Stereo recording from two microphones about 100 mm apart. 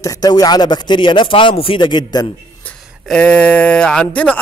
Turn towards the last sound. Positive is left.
turn(degrees=10)  # may be behind; listen again after turning